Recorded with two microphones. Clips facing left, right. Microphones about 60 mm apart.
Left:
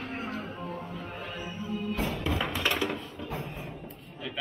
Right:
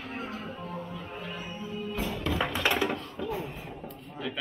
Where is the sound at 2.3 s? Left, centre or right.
Centre.